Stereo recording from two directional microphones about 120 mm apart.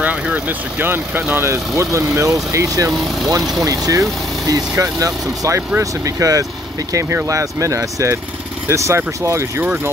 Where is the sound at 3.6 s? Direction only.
30° right (ahead or behind).